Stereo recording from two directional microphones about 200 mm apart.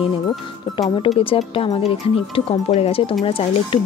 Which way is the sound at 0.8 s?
30° left (ahead or behind).